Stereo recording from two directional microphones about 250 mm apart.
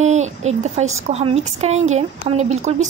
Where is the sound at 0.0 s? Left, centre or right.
Right.